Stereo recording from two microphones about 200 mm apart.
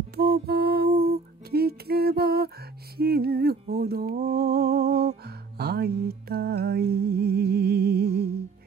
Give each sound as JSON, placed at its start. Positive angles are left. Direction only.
{"t": 0.1, "sound": "music", "side_deg": -50}